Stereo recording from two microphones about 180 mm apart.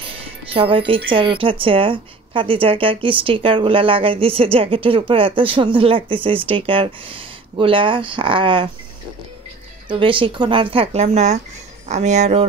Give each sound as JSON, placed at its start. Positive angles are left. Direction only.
{"t": 0.0, "sound": "music", "side_deg": -30}
{"t": 1.1, "sound": "speech", "side_deg": -30}
{"t": 9.8, "sound": "speech", "side_deg": -30}